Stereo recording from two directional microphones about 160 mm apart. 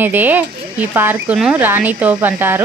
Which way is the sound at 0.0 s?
10° right (ahead or behind).